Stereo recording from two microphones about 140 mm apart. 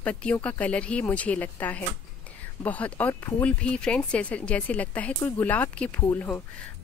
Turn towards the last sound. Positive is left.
turn(degrees=15)  # may be behind; listen again after turning